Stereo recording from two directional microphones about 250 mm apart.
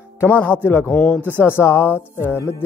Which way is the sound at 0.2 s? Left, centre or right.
Centre.